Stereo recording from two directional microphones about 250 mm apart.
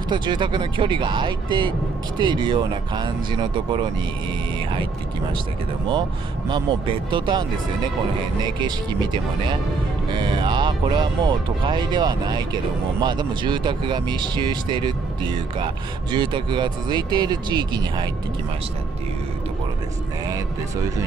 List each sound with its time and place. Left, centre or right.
0.1 s speech: centre
6.5 s speech: centre
8.5 s speech: centre